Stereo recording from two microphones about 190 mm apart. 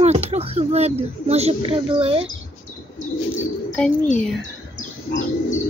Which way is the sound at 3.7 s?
5° left (ahead or behind).